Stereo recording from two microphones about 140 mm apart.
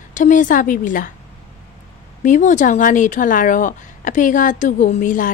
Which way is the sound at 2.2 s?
65° left (ahead or behind).